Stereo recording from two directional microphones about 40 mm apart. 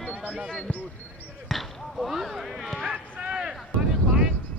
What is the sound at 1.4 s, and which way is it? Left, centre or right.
Speech, centre.